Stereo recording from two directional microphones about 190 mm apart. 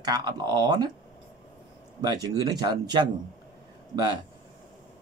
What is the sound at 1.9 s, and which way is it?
Speech, 20° right (ahead or behind).